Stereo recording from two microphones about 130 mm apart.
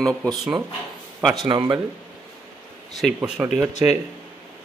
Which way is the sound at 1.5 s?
35° right (ahead or behind).